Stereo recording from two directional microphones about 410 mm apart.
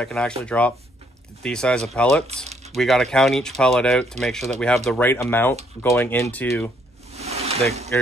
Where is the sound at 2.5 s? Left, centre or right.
Centre.